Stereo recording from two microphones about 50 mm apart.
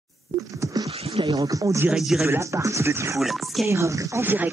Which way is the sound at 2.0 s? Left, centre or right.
Centre.